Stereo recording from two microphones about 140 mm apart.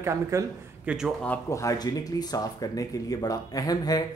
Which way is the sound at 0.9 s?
10° right (ahead or behind).